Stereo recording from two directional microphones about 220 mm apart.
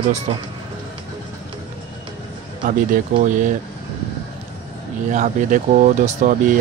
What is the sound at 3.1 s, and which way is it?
Speech, 35° right (ahead or behind).